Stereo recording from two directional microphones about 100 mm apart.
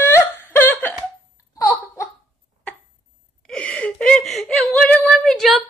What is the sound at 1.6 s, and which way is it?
Laughter, 30° left (ahead or behind).